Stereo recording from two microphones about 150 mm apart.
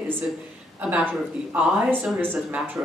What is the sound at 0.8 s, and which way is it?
Speech, 10° right (ahead or behind).